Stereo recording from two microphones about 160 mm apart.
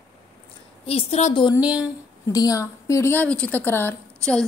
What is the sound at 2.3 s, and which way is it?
A woman's voice, 20° left (ahead or behind).